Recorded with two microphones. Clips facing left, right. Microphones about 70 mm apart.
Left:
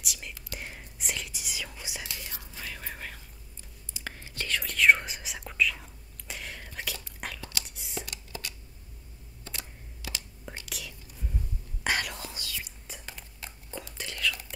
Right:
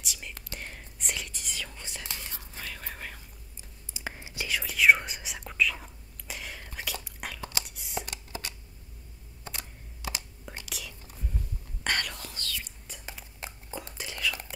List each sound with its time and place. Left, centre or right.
0.0 s whispering: centre
2.0 s whispering: right
2.6 s whispering: centre
3.9 s whispering: centre
7.6 s a sound: centre
8.1 s a sound: right
9.4 s computer keyboard: right
10.4 s whispering: centre
13.4 s a sound: right
13.9 s whispering: centre